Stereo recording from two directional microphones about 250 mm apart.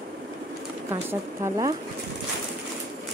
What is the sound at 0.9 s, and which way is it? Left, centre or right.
Speech, centre.